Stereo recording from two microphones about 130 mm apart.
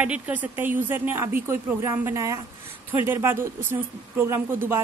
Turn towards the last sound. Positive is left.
turn(degrees=-20)  # may be behind; listen again after turning